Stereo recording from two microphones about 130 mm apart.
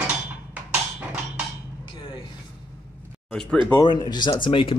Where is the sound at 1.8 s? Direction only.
40° left (ahead or behind).